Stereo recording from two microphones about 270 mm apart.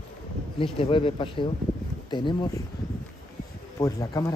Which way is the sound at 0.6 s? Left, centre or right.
Centre.